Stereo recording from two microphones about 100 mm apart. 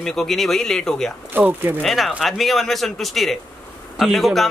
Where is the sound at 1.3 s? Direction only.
20° right (ahead or behind).